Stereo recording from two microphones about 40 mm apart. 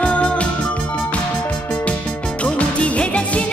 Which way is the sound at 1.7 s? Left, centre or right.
Left.